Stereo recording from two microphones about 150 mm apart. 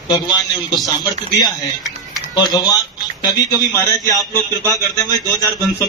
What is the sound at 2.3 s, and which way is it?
A man's voice, 25° left (ahead or behind).